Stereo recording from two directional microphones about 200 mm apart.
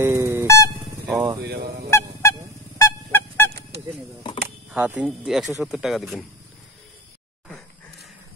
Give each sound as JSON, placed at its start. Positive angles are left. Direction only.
{"t": 0.0, "sound": "a sound", "side_deg": -10}
{"t": 1.0, "sound": "vehicle", "side_deg": -15}
{"t": 1.4, "sound": "honk", "side_deg": -50}
{"t": 1.9, "sound": "honk", "side_deg": 15}
{"t": 4.6, "sound": "speech", "side_deg": -10}
{"t": 7.4, "sound": "a sound", "side_deg": 0}